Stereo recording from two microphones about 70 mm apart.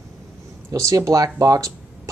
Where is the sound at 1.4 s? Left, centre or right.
Right.